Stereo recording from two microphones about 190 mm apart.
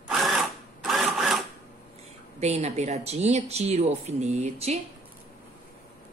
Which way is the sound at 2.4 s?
35° right (ahead or behind).